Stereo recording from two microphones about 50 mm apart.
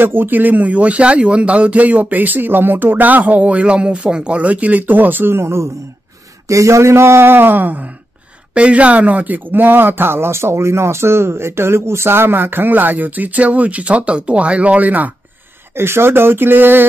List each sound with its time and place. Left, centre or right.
0.0 s speech: right
5.4 s speech: right
6.4 s speech: right
8.5 s speech: right
15.7 s speech: right